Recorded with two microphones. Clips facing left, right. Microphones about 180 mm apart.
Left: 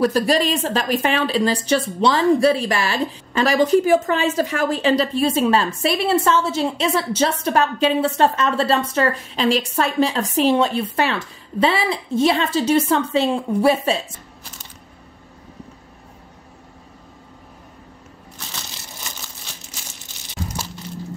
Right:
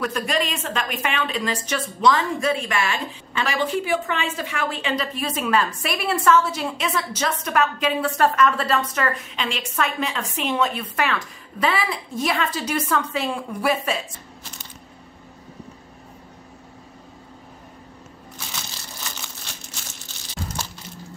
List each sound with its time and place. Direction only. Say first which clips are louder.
0.0 s a woman's voice: left 7 dB; 35° left (ahead or behind)